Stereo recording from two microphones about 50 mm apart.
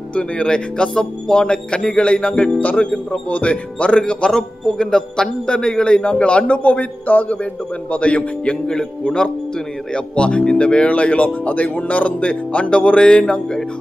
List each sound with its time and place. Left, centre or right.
0.1 s speech: left
13.2 s speech: centre